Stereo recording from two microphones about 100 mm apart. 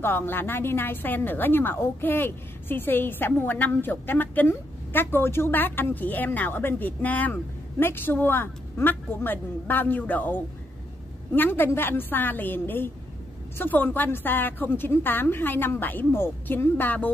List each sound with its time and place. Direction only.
0.0 s a woman's voice: 20° left (ahead or behind)